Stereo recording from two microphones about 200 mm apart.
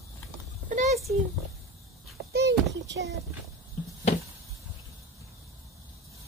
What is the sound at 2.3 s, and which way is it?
Child singing, 55° right (ahead or behind).